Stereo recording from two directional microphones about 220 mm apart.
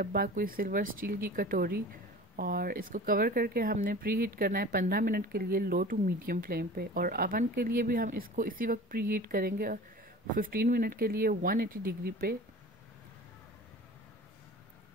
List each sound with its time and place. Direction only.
0.0 s speech: 40° right (ahead or behind)